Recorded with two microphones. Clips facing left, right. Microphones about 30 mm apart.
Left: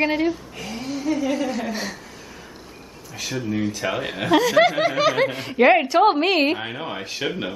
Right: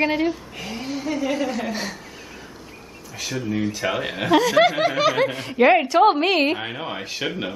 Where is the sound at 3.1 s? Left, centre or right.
Centre.